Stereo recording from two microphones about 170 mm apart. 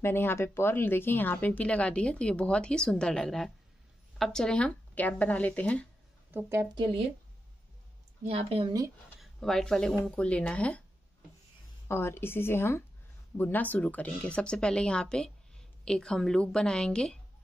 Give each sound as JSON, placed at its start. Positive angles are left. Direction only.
{"t": 0.0, "sound": "speech", "side_deg": 15}
{"t": 6.3, "sound": "a woman's voice", "side_deg": -15}
{"t": 8.2, "sound": "a woman's voice", "side_deg": -40}
{"t": 9.2, "sound": "speech", "side_deg": 0}
{"t": 11.9, "sound": "speech", "side_deg": 15}